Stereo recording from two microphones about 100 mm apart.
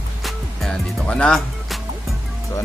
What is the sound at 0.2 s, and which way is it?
Music, centre (ahead or behind).